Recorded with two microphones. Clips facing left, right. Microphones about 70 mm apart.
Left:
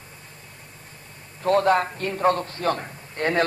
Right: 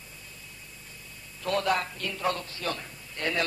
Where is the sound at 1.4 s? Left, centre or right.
Left.